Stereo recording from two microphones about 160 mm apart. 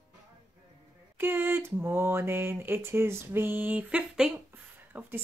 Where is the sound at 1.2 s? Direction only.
15° right (ahead or behind).